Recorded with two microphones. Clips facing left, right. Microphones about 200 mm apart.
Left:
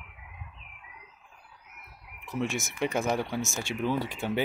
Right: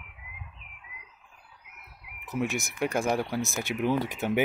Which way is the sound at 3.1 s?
10° right (ahead or behind).